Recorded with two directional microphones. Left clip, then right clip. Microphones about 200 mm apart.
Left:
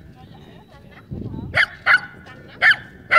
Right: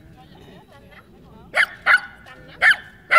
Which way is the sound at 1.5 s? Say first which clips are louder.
Even; 50° right (ahead or behind).